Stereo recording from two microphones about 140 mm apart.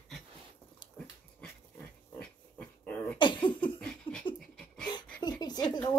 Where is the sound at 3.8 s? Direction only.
5° left (ahead or behind).